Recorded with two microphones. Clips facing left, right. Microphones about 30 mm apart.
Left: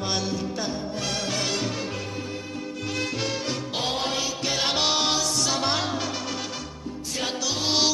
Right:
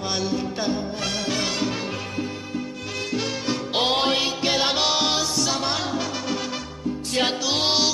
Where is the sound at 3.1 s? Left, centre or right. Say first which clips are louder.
Right 2 dB; centre.